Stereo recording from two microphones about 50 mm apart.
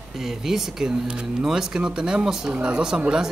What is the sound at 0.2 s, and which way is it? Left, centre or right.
Speech, centre.